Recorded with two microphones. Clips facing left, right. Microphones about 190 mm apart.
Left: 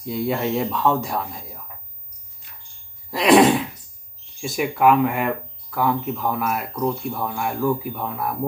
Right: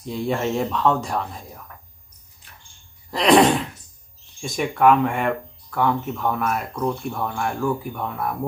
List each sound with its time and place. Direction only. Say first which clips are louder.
0.0 s speech: left 1 dB; 5° left (ahead or behind)
3.1 s a sound: left 1 dB; centre (ahead or behind)
4.4 s speech: even; 5° left (ahead or behind)